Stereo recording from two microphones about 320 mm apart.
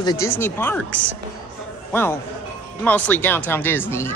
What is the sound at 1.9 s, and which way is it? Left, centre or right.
A man's voice, centre.